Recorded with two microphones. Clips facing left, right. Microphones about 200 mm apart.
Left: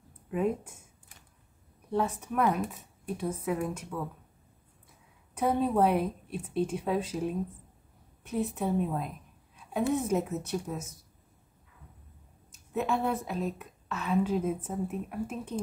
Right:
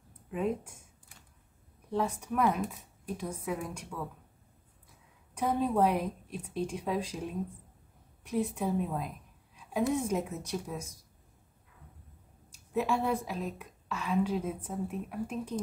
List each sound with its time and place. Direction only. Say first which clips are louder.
1.9 s a woman's voice: left 2 dB; centre (ahead or behind)
5.3 s a woman's voice: left 2 dB; 5° left (ahead or behind)
8.3 s a woman's voice: left 1 dB; centre (ahead or behind)
12.7 s a woman's voice: even; centre (ahead or behind)